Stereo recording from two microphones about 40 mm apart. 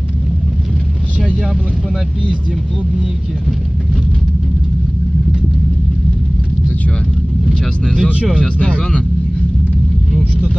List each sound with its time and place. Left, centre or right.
7.8 s speech: centre